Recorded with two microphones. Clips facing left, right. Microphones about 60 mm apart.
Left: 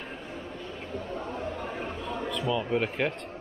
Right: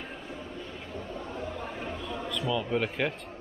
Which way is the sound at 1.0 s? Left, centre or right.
Left.